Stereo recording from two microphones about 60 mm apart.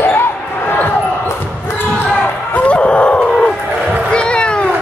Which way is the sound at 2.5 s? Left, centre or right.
Left.